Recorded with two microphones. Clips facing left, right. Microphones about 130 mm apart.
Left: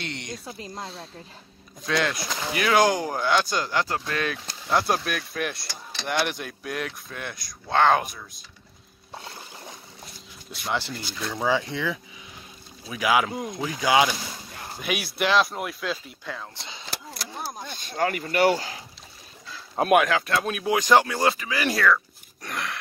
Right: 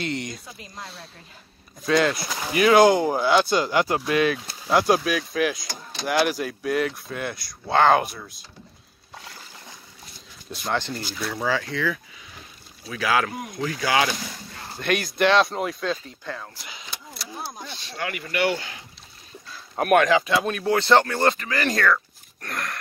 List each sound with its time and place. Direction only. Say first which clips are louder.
0.0 s a sound: right 6 dB; 5° right (ahead or behind)
1.9 s speech: right 5 dB; centre (ahead or behind)
10.9 s speech: right 3 dB; 45° right (ahead or behind)
11.3 s speech: left 1 dB; 20° left (ahead or behind)
14.8 s speech: right 5 dB; 5° left (ahead or behind)
16.5 s speech: left 1 dB; 25° left (ahead or behind)
17.6 s speech: left 9 dB; 50° left (ahead or behind)
19.9 s speech: right 3 dB; 5° left (ahead or behind)